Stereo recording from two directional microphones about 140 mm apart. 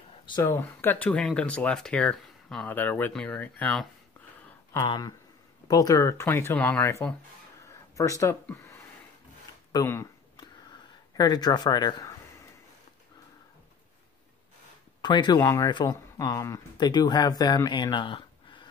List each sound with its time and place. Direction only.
0.4 s speech: 15° left (ahead or behind)
4.8 s speech: 35° left (ahead or behind)
5.7 s speech: 25° left (ahead or behind)
9.7 s speech: 30° left (ahead or behind)
11.1 s speech: 30° left (ahead or behind)
15.0 s speech: 30° left (ahead or behind)
15.4 s speech: 20° left (ahead or behind); by 18.7 s 35° left (ahead or behind)